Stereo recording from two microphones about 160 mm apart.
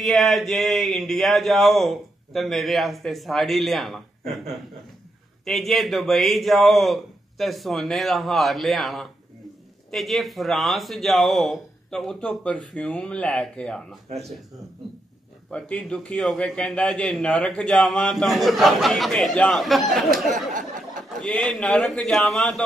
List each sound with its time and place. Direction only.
0.0 s speech: centre (ahead or behind)
5.4 s speech: centre (ahead or behind)
14.1 s speech: 40° right (ahead or behind)
15.5 s speech: 5° left (ahead or behind)
20.3 s a sound: 55° right (ahead or behind)
21.1 s speech: 5° left (ahead or behind)